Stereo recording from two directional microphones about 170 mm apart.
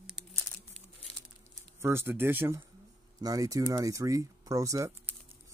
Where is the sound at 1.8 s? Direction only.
15° right (ahead or behind).